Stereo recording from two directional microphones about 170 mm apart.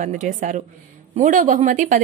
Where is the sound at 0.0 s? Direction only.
50° right (ahead or behind).